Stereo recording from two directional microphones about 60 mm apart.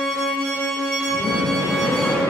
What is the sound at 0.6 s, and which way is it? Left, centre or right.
Music, centre.